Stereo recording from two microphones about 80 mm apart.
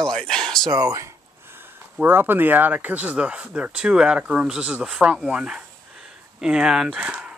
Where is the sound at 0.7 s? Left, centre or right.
Right.